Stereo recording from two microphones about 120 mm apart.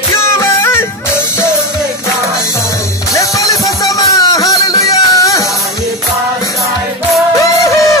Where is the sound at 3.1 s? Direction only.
25° left (ahead or behind).